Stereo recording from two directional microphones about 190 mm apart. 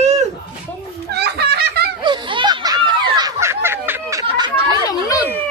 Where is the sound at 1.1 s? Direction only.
60° right (ahead or behind).